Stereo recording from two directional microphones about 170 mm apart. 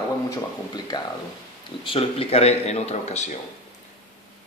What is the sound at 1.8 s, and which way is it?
A man's voice, 35° left (ahead or behind).